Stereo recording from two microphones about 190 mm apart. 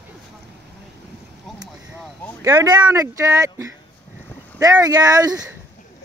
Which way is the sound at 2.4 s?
15° right (ahead or behind).